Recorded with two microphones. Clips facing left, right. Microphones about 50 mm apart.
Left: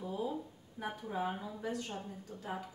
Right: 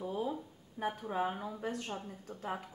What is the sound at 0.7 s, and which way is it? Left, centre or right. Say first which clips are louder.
Speech: right 3 dB; right.